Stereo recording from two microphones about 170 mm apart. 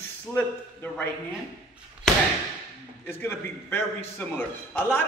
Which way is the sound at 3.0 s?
15° left (ahead or behind).